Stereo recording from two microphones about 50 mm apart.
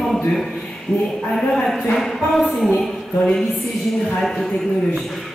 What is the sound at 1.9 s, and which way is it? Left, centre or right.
Speech, centre.